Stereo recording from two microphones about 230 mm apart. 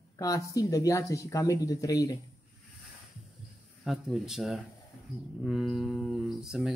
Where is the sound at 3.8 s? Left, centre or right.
Centre.